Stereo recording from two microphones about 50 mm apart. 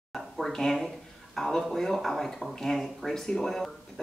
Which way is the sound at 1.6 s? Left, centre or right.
Centre.